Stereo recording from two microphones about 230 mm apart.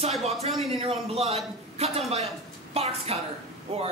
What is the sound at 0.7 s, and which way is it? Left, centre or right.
Speech, right.